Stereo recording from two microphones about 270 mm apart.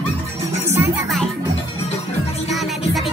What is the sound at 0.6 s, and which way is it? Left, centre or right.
Music, centre.